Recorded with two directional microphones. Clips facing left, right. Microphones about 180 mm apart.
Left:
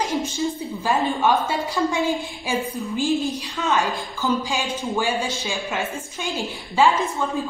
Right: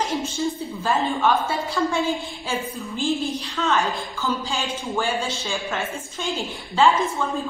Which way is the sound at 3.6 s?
10° left (ahead or behind).